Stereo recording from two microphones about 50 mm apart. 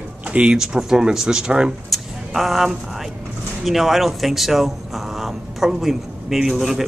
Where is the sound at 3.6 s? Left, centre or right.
Centre.